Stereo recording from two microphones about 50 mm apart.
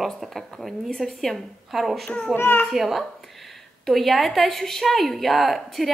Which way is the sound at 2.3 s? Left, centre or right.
Left.